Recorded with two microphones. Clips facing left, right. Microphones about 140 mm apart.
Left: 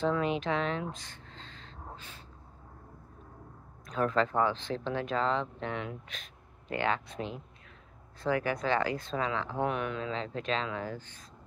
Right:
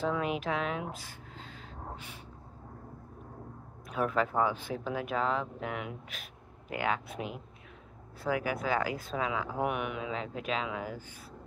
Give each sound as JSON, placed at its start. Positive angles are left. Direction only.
{"t": 0.0, "sound": "speech", "side_deg": -5}
{"t": 3.8, "sound": "speech", "side_deg": -5}